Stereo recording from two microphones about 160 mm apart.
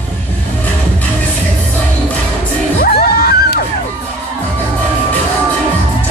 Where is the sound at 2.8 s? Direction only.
75° left (ahead or behind).